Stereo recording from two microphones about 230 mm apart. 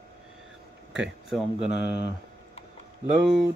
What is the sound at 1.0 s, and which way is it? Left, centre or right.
Speech, centre.